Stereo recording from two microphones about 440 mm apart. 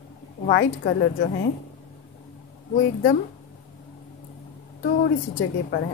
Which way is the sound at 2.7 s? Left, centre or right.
Left.